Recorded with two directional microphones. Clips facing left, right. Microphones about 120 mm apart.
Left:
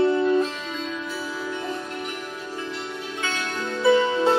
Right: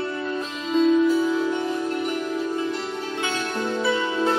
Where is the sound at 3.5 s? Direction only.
15° right (ahead or behind).